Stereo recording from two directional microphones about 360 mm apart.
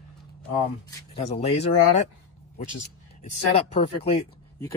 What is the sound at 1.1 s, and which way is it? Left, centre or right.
Speech, centre.